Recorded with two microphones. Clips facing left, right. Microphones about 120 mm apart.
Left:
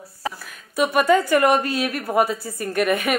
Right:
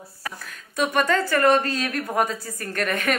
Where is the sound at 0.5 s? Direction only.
10° left (ahead or behind).